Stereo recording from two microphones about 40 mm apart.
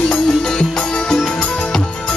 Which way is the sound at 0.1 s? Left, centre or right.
Centre.